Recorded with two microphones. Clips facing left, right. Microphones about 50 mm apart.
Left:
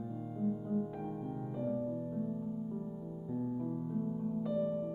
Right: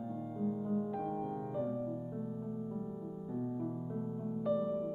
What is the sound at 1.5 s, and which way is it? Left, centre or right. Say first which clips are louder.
Music: left 1 dB; centre.